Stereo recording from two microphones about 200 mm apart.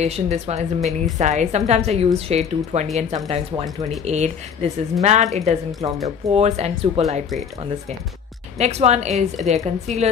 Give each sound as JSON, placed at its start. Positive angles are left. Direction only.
{"t": 0.0, "sound": "a woman's voice", "side_deg": -35}
{"t": 8.5, "sound": "a woman's voice", "side_deg": -35}